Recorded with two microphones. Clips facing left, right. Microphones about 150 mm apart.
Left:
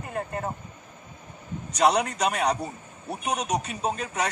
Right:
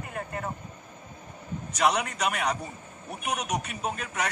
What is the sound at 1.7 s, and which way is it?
A woman's voice, 35° left (ahead or behind).